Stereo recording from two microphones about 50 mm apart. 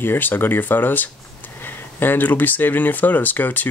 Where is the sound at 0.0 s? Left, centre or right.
Left.